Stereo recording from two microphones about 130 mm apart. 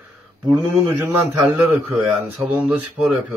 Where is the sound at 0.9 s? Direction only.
15° right (ahead or behind).